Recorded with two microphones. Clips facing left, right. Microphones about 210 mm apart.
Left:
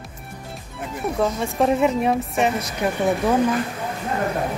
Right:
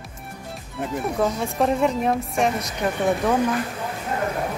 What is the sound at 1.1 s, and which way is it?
Speech, centre (ahead or behind).